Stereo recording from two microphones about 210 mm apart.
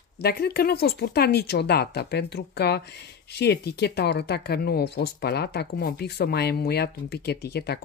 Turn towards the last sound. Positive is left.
turn(degrees=50)  # may be behind; listen again after turning